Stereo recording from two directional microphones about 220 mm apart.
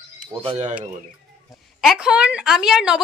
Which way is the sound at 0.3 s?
25° right (ahead or behind).